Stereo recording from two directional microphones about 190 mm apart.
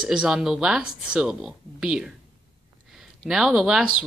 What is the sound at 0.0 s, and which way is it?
Speech, 5° right (ahead or behind).